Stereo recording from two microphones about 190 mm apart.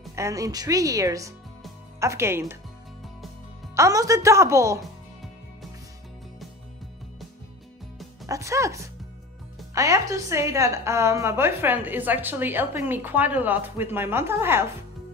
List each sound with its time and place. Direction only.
0.1 s a woman's voice: 15° right (ahead or behind)
3.7 s a woman's voice: 15° right (ahead or behind)
8.3 s a woman's voice: 15° right (ahead or behind)